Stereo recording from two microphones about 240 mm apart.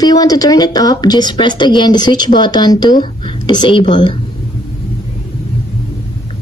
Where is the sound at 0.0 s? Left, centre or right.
Centre.